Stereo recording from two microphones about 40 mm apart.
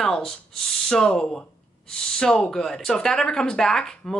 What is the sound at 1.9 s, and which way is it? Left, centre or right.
Speech, left.